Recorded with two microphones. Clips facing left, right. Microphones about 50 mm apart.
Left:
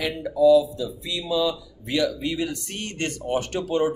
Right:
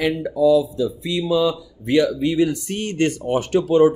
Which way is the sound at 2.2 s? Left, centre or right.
Centre.